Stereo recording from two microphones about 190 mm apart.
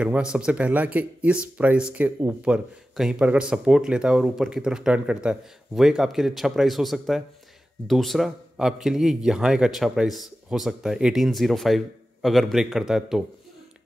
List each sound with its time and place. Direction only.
0.0 s speech: 5° right (ahead or behind)